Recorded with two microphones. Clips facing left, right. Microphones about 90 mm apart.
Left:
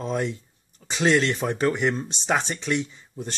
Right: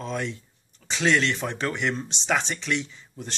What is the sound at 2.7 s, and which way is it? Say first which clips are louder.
Speech: left 3 dB; 10° left (ahead or behind).